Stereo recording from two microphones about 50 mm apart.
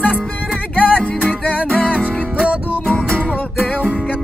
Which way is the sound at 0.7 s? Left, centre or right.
Left.